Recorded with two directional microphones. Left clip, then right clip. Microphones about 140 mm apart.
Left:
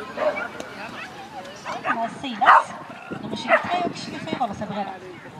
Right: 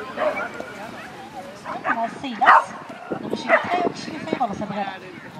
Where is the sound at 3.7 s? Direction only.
35° right (ahead or behind).